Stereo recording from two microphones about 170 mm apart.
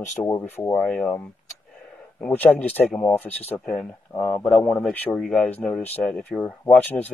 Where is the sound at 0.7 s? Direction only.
5° left (ahead or behind).